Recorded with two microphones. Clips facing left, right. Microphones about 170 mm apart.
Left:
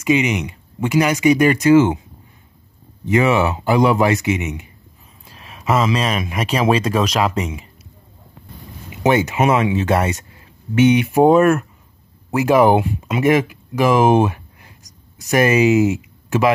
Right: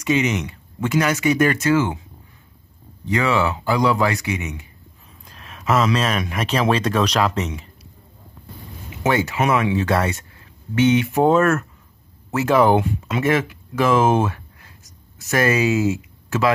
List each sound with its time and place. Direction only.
0.0 s speech: 10° left (ahead or behind)
3.1 s speech: 20° left (ahead or behind)
5.2 s speech: 5° left (ahead or behind)
9.0 s speech: 20° left (ahead or behind)